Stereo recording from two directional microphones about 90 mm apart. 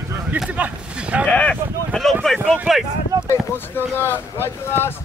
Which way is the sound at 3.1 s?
40° right (ahead or behind).